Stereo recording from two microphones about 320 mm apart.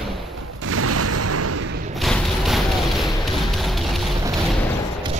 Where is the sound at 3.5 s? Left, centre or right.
Centre.